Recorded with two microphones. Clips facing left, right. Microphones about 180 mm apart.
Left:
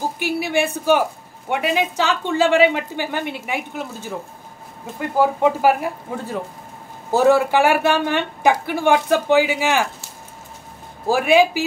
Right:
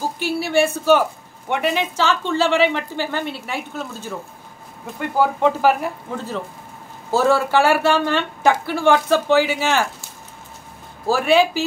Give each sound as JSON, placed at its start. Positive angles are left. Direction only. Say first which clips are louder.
{"t": 0.2, "sound": "speech", "louder": "right 3 dB", "side_deg": 15}
{"t": 5.1, "sound": "speech", "louder": "left 1 dB", "side_deg": 10}
{"t": 11.1, "sound": "speech", "louder": "left 1 dB", "side_deg": 15}